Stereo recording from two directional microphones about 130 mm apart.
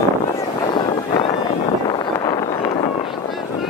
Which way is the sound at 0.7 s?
40° left (ahead or behind).